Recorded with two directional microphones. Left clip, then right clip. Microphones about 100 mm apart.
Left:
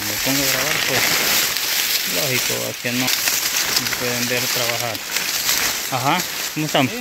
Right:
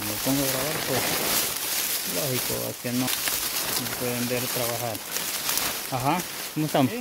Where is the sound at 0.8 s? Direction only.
15° right (ahead or behind).